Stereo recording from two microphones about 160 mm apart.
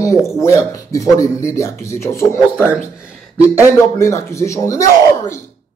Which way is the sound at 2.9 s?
5° right (ahead or behind).